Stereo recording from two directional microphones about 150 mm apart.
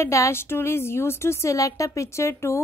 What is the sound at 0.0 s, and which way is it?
A woman's voice, 20° left (ahead or behind).